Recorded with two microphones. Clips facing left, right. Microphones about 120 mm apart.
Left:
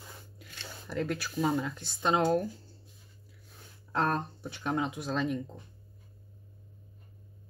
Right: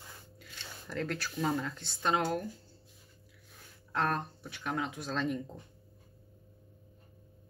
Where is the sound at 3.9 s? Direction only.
30° left (ahead or behind).